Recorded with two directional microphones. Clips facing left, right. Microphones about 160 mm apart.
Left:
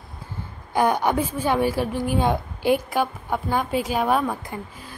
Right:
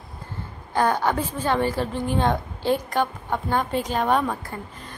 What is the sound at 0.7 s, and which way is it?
A woman's voice, 15° left (ahead or behind).